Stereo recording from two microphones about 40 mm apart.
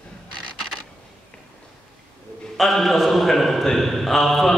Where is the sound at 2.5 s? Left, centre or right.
Centre.